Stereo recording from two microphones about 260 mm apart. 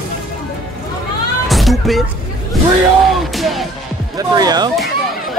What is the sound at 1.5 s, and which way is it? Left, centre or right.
Music, centre.